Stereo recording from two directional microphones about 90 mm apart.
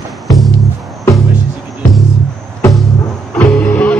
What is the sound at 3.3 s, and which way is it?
Music, 15° left (ahead or behind).